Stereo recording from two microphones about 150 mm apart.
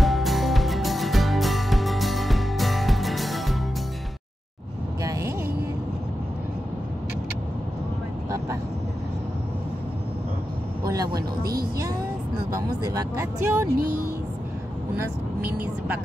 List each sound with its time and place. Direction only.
0.0 s music: centre (ahead or behind)
5.0 s a sound: 20° right (ahead or behind)
10.9 s vehicle: 25° right (ahead or behind)
12.5 s a sound: 20° right (ahead or behind)
13.7 s speech: 85° right
15.0 s speech: 10° right (ahead or behind)